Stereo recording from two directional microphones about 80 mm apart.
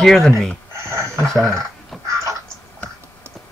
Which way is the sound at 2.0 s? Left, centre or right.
Right.